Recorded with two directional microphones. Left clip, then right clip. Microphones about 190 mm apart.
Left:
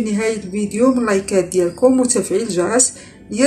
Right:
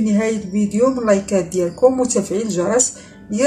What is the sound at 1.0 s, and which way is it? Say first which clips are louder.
Speech: even; centre (ahead or behind).